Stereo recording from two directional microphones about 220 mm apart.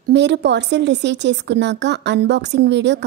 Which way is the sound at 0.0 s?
50° right (ahead or behind).